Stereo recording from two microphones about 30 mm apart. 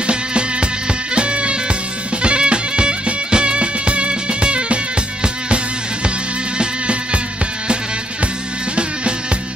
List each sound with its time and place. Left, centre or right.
0.0 s music: right
6.6 s music: right